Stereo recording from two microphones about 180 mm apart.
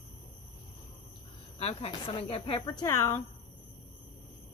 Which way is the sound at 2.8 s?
20° left (ahead or behind).